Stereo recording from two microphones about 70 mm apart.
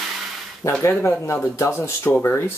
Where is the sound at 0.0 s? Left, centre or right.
Centre.